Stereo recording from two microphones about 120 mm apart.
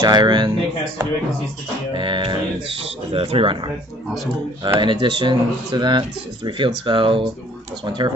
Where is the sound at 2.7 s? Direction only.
50° right (ahead or behind).